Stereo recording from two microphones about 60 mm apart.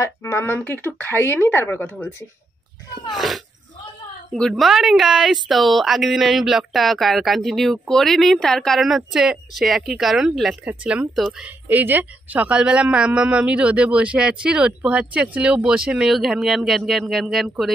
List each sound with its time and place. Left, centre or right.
0.0 s speech: left
0.6 s speech: left
4.3 s speech: centre
8.8 s speech: centre
10.7 s speech: right
11.6 s speech: right; by 17.7 s centre